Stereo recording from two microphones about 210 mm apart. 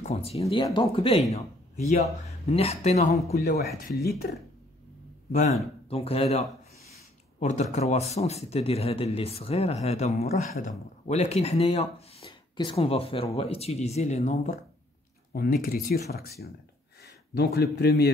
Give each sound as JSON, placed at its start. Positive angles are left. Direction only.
{"t": 0.0, "sound": "a man's voice", "side_deg": 30}
{"t": 3.4, "sound": "speech", "side_deg": 45}
{"t": 5.3, "sound": "speech", "side_deg": 35}
{"t": 15.3, "sound": "speech", "side_deg": 45}